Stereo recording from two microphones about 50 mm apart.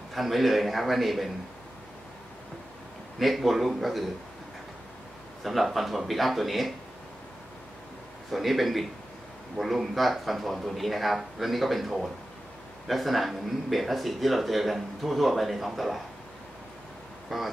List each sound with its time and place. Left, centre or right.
0.1 s speech: centre
3.2 s speech: centre
5.4 s speech: centre
8.3 s speech: centre
17.3 s speech: centre